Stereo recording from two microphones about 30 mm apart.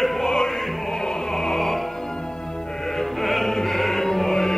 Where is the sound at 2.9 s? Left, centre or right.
Centre.